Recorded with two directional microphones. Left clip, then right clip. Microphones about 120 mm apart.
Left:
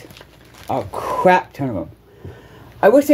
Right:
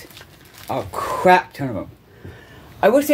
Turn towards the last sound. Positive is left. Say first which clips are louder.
# left 3 dB
turn(degrees=30)  # may be behind; listen again after turning